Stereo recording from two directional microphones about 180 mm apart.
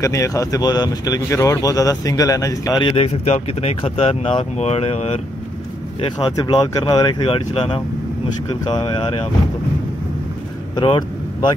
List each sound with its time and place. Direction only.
0.0 s speech: 20° left (ahead or behind)
3.3 s speech: 35° left (ahead or behind)
10.8 s speech: 25° left (ahead or behind)